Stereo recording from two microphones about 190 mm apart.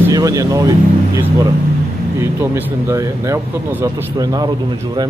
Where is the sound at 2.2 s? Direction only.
10° right (ahead or behind).